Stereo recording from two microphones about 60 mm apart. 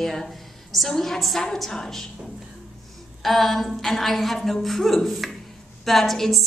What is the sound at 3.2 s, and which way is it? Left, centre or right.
A woman's voice, centre.